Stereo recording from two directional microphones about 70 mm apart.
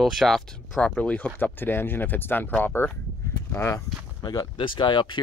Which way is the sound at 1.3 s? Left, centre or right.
Left.